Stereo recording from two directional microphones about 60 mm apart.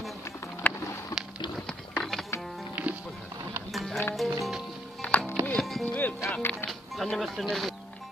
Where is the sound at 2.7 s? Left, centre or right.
Right.